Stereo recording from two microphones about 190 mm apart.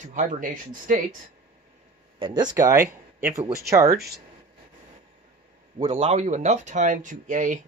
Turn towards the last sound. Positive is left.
turn(degrees=-40)  # may be behind; listen again after turning